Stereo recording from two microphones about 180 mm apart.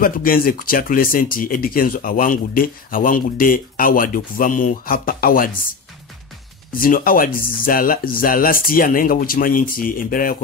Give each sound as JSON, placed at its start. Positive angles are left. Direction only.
{"t": 0.0, "sound": "speech", "side_deg": 50}